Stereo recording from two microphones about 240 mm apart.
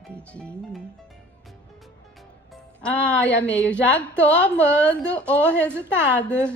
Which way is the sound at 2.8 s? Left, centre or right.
Centre.